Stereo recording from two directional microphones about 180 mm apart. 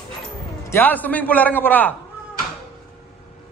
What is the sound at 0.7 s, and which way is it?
A man's voice, 10° left (ahead or behind).